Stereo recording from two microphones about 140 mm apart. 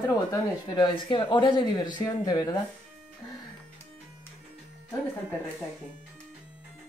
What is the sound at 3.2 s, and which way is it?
Music, 30° left (ahead or behind).